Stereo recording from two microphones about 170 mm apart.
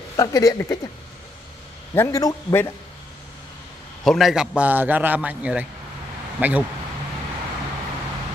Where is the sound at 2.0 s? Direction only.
15° left (ahead or behind).